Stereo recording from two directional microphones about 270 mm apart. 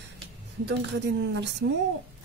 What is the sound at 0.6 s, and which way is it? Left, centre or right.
Speech, right.